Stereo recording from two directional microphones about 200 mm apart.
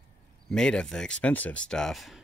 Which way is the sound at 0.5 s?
5° left (ahead or behind).